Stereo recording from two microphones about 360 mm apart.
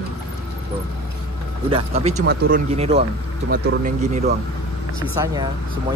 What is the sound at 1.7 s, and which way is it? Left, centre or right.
Speech, centre.